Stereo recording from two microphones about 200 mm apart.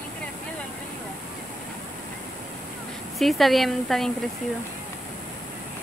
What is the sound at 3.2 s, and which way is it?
Speech, centre (ahead or behind).